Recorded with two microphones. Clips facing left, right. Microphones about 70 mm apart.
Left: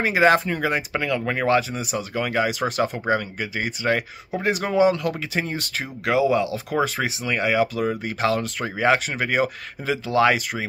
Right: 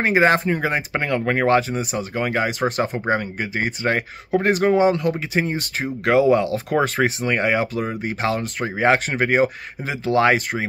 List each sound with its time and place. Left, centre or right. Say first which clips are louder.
0.0 s speech: right 1 dB; right
6.1 s speech: right 4 dB; right